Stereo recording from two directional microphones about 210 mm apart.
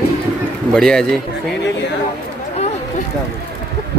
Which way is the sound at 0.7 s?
5° left (ahead or behind).